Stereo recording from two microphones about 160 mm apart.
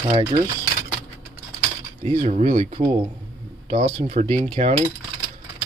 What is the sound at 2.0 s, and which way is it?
Speech, 45° right (ahead or behind).